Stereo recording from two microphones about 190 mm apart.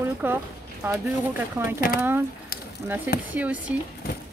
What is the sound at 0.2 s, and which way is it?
Speech, 10° right (ahead or behind).